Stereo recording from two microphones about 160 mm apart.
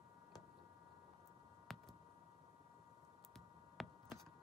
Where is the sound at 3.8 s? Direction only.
Centre (ahead or behind).